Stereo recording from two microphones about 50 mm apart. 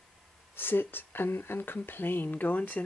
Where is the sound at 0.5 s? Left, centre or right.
Left.